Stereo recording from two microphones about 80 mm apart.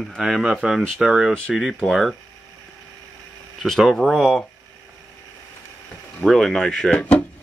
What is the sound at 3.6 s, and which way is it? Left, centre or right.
Speech, centre.